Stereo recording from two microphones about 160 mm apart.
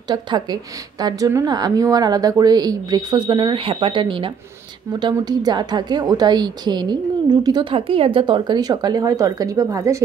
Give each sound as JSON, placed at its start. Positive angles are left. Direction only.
{"t": 0.1, "sound": "a woman's voice", "side_deg": -25}